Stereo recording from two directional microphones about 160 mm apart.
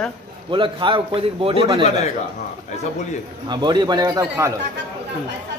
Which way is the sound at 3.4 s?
30° right (ahead or behind).